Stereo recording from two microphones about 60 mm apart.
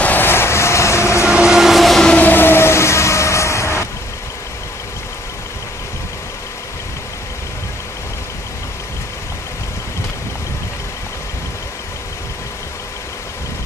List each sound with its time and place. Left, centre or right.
0.0 s vehicle: left
1.2 s train: centre
2.1 s train: left